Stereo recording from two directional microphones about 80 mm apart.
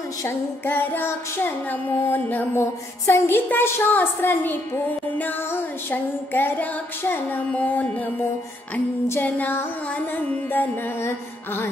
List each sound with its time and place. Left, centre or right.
0.7 s music: left
9.2 s music: centre